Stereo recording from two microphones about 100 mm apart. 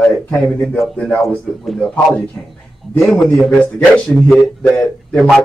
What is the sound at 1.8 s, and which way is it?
Speech, 5° left (ahead or behind).